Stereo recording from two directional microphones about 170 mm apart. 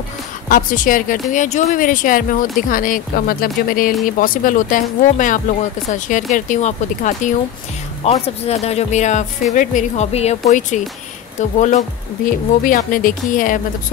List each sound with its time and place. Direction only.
0.5 s a woman's voice: 55° left (ahead or behind)
12.6 s a woman's voice: 55° left (ahead or behind)